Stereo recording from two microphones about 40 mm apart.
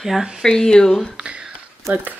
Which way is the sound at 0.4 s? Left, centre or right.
Centre.